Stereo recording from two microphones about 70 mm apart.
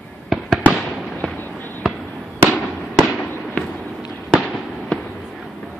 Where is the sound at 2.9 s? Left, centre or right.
Centre.